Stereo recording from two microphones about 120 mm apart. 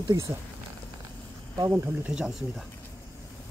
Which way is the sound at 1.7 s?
15° right (ahead or behind).